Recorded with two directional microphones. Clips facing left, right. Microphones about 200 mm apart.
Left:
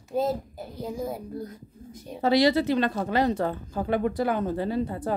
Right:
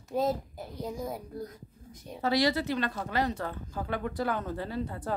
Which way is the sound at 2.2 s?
25° left (ahead or behind).